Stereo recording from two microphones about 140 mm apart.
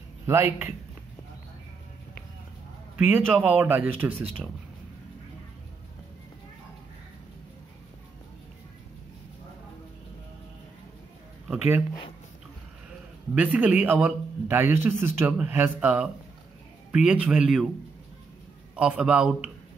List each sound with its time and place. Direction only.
0.3 s a man's voice: 15° right (ahead or behind)
3.3 s a man's voice: 10° right (ahead or behind)
11.4 s speech: 10° right (ahead or behind)
13.3 s a man's voice: 10° right (ahead or behind)
18.8 s a man's voice: 10° right (ahead or behind)